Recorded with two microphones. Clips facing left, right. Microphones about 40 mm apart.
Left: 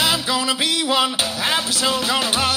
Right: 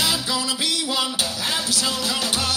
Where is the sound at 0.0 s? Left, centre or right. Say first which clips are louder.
Left 4 dB; left.